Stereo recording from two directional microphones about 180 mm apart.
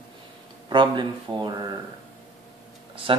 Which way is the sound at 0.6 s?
25° right (ahead or behind).